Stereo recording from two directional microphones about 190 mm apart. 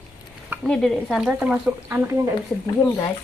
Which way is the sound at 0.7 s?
Centre (ahead or behind).